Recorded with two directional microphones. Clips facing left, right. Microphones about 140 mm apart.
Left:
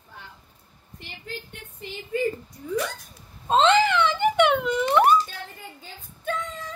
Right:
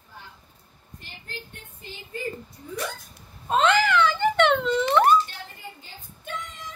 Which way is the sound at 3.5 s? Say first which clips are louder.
Left 2 dB; 25° left (ahead or behind).